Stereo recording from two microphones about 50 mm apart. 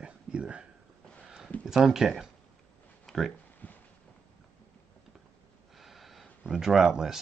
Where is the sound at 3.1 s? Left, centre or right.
Centre.